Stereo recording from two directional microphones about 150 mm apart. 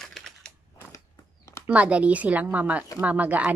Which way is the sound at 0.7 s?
20° left (ahead or behind).